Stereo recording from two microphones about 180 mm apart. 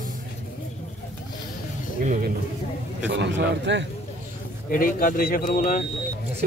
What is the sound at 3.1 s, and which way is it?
Speech, 70° right (ahead or behind).